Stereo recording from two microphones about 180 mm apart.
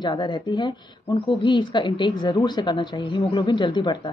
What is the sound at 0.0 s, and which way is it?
A woman's voice, 25° left (ahead or behind).